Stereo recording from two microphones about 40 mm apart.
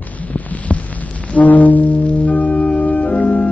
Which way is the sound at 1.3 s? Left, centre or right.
Left.